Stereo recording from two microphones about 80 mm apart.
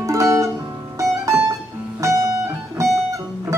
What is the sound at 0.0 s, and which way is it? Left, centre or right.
Music, right.